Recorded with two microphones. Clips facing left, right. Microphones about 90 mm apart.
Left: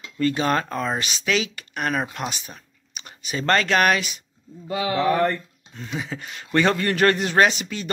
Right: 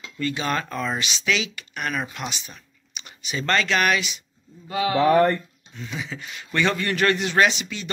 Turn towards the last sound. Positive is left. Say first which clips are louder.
# left 2 dB
turn(degrees=45)  # may be behind; listen again after turning